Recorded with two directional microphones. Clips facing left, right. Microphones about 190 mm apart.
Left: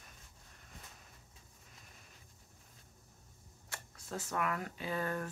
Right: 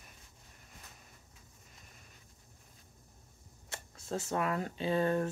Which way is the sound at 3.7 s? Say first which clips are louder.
Right 5 dB; 25° right (ahead or behind).